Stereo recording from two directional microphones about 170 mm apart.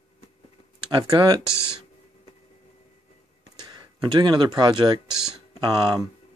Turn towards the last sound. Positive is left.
turn(degrees=-20)  # may be behind; listen again after turning